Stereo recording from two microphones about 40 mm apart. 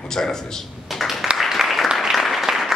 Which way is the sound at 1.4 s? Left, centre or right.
Centre.